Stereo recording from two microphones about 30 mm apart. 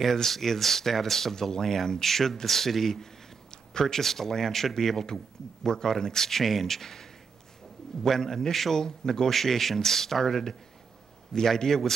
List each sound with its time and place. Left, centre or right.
0.0 s speech: centre
8.8 s speech: left
9.3 s speech: centre